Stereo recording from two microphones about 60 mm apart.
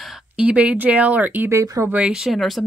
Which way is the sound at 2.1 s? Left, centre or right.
Centre.